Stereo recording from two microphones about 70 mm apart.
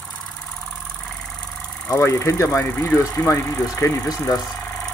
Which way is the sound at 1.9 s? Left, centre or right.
Left.